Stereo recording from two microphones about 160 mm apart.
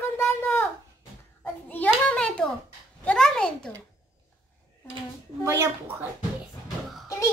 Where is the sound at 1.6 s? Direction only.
10° left (ahead or behind).